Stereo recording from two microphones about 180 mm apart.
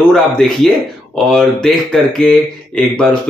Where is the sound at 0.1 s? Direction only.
Centre (ahead or behind).